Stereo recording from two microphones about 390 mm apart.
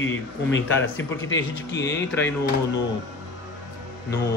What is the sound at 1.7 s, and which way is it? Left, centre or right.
Speech, left.